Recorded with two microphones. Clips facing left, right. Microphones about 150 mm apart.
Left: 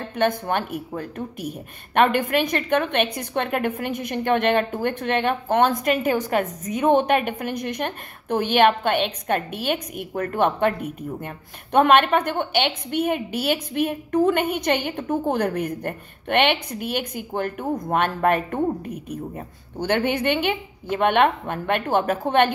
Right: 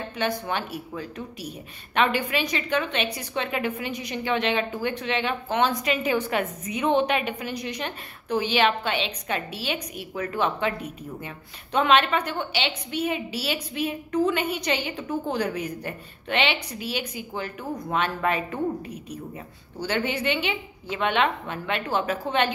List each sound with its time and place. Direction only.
0.1 s a woman's voice: 55° left (ahead or behind)